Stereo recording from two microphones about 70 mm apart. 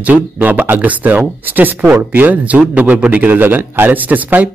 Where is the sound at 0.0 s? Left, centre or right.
Right.